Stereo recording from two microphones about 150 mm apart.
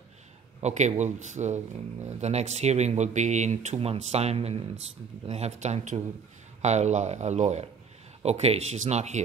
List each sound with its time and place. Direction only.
0.6 s speech: 50° right (ahead or behind)